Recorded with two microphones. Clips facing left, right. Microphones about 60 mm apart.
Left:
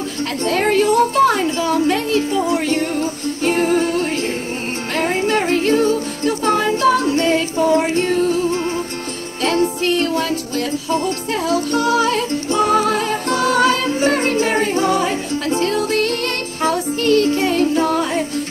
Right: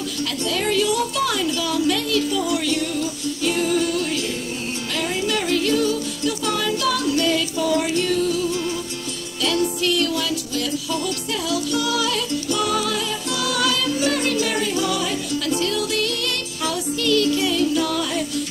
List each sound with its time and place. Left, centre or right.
0.5 s music: left
11.4 s music: left